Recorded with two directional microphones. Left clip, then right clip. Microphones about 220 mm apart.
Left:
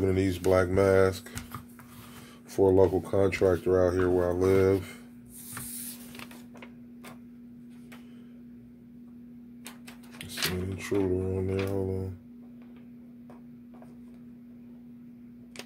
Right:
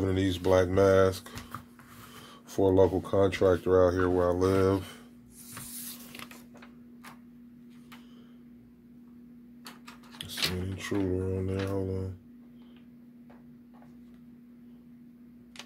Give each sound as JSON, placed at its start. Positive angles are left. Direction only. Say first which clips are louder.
{"t": 0.0, "sound": "speech", "louder": "left 2 dB", "side_deg": -20}
{"t": 2.5, "sound": "speech", "louder": "left 1 dB", "side_deg": -25}
{"t": 10.6, "sound": "speech", "louder": "left 3 dB", "side_deg": -30}